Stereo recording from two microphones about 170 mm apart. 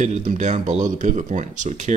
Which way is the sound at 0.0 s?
45° right (ahead or behind).